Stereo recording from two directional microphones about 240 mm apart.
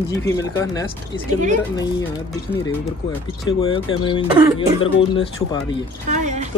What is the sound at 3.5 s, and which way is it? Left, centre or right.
Speech, centre.